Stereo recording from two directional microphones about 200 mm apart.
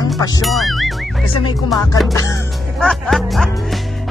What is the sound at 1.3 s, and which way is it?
Speech, 20° left (ahead or behind).